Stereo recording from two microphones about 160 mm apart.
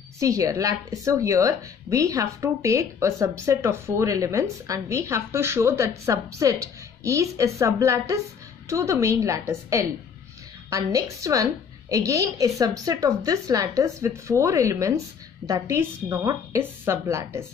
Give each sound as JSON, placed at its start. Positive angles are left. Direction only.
{"t": 0.2, "sound": "a woman's voice", "side_deg": -20}